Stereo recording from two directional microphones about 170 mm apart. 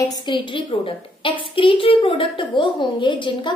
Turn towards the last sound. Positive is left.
turn(degrees=30)  # may be behind; listen again after turning